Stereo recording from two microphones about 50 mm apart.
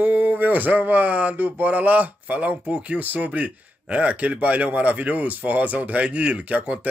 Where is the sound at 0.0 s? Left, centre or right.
Right.